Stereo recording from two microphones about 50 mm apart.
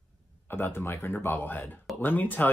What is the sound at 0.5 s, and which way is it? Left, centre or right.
Speech, left.